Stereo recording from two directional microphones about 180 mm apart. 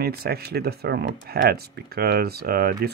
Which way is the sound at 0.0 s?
60° right (ahead or behind).